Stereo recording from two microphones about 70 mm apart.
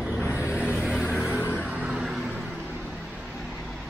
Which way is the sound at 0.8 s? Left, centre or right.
Centre.